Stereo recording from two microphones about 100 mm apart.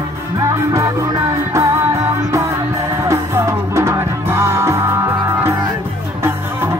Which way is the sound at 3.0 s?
30° right (ahead or behind).